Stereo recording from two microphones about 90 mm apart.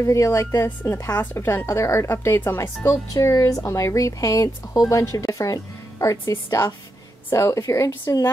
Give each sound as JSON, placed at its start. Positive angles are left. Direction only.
{"t": 0.0, "sound": "a woman's voice", "side_deg": 35}
{"t": 3.1, "sound": "speech", "side_deg": 40}